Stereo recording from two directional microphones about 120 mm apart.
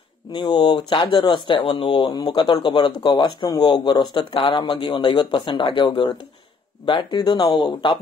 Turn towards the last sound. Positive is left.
turn(degrees=40)  # may be behind; listen again after turning